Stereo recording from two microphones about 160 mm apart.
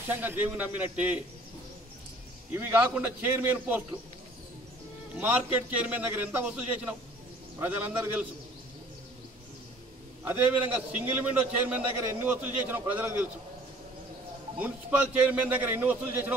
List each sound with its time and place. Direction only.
0.1 s a man's voice: 10° right (ahead or behind)
2.5 s a man's voice: 10° right (ahead or behind)
5.1 s a man's voice: 10° right (ahead or behind)
10.2 s a man's voice: 10° right (ahead or behind)
14.6 s a man's voice: 10° right (ahead or behind)